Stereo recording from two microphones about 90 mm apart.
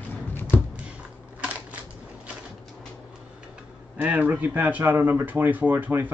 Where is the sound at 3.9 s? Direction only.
20° right (ahead or behind).